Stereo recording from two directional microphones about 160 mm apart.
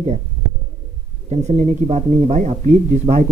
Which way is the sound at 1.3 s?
45° right (ahead or behind).